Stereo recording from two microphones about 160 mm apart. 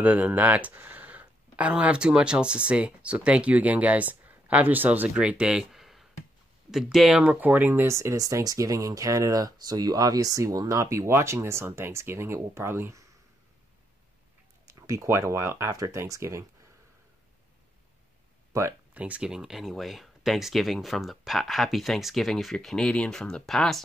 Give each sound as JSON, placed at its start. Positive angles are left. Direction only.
{"t": 0.0, "sound": "speech", "side_deg": -10}
{"t": 14.7, "sound": "speech", "side_deg": -20}
{"t": 18.5, "sound": "speech", "side_deg": -15}